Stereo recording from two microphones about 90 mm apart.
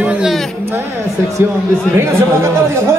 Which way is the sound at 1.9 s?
30° right (ahead or behind).